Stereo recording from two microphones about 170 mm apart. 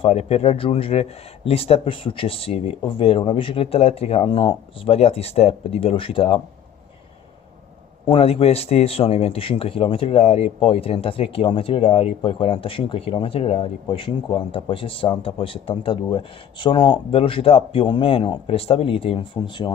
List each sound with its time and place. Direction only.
0.0 s speech: 40° left (ahead or behind)
8.1 s speech: 35° left (ahead or behind)